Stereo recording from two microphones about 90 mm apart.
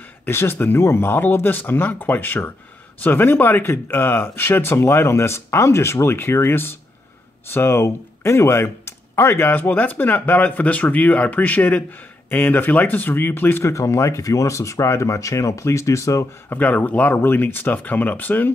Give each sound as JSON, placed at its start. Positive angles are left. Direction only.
{"t": 0.2, "sound": "speech", "side_deg": 25}
{"t": 16.4, "sound": "speech", "side_deg": 20}